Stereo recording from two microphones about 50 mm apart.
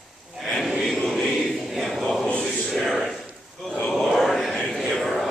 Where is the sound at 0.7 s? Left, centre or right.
Centre.